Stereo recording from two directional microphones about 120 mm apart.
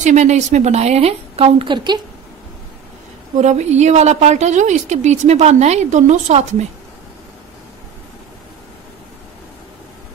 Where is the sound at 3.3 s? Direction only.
70° right (ahead or behind).